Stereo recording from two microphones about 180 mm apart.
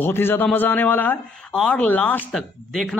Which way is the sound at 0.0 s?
10° left (ahead or behind).